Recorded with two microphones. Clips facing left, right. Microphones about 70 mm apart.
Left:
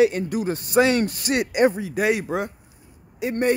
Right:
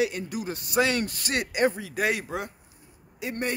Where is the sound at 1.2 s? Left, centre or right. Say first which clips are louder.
Left 5 dB; centre.